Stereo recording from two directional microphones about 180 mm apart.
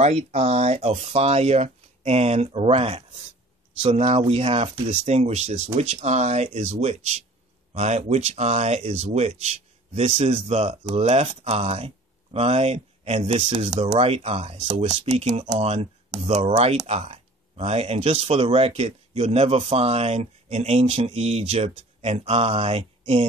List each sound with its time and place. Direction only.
0.0 s speech: 35° right (ahead or behind)